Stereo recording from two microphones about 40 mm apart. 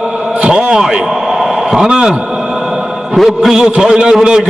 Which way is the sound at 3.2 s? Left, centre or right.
Centre.